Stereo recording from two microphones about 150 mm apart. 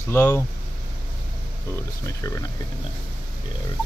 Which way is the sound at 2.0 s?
20° left (ahead or behind).